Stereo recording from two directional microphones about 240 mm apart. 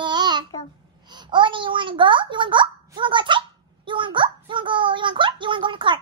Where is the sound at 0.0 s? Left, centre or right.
Centre.